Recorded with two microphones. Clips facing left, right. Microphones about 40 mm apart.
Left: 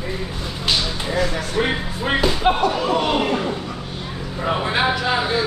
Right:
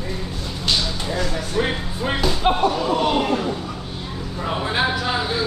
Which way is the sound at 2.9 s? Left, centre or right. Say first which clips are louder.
Even; left.